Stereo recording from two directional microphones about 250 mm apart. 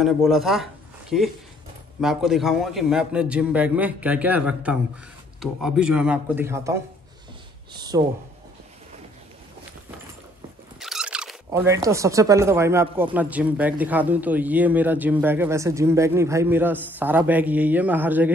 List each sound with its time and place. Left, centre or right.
0.0 s a man's voice: centre
10.8 s speech: centre